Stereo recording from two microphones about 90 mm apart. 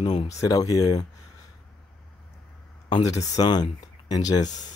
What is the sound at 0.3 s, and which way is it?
Speech, 40° left (ahead or behind).